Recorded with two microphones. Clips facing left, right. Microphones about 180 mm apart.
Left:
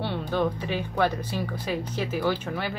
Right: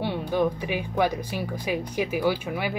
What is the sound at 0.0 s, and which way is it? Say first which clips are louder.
Speech: right 2 dB; 15° right (ahead or behind).